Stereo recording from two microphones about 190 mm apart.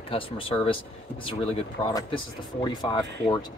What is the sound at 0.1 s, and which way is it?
Speech, 30° left (ahead or behind).